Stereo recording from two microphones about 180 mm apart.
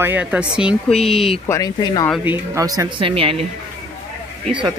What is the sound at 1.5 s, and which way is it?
Speech, 20° left (ahead or behind).